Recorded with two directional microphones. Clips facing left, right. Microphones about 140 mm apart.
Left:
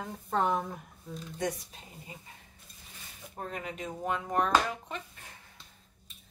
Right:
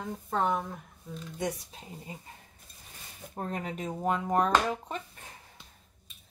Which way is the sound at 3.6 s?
40° right (ahead or behind).